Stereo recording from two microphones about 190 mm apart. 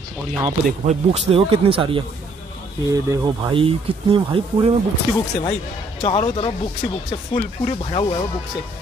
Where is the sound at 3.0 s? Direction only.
20° right (ahead or behind).